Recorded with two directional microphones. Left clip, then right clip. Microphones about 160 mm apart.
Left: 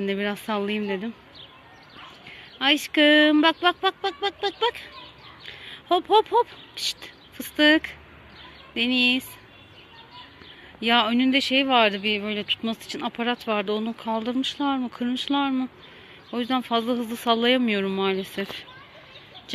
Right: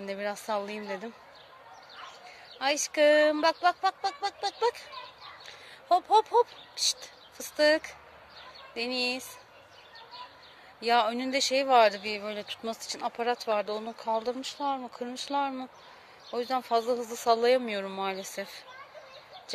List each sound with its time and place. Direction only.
0.0 s speech: 5° right (ahead or behind)
2.6 s speech: 5° right (ahead or behind)
6.3 s speech: 20° left (ahead or behind)
7.5 s speech: centre (ahead or behind)
10.8 s speech: 10° right (ahead or behind)
14.4 s speech: 5° left (ahead or behind); by 18.7 s 10° right (ahead or behind)